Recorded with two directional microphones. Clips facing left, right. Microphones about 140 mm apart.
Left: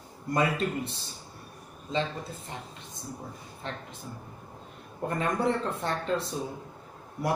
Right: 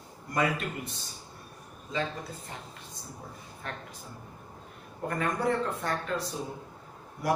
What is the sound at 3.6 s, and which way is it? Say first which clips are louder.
Speech: left 2 dB; 25° left (ahead or behind).